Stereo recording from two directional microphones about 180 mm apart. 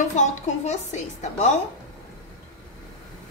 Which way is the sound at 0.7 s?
40° left (ahead or behind).